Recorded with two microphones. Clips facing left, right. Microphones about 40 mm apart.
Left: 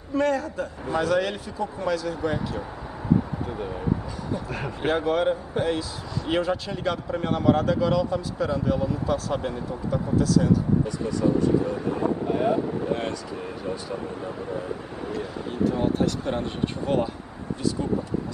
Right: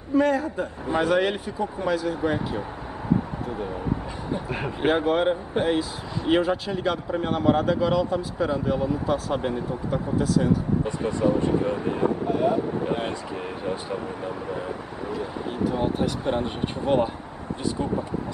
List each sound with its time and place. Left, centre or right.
0.1 s speech: centre
3.4 s speech: centre
4.3 s speech: right
10.8 s speech: right
12.3 s speech: centre
12.8 s speech: right
15.0 s speech: centre